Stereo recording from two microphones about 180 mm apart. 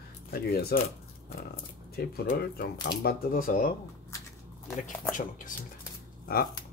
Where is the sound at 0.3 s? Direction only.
60° left (ahead or behind).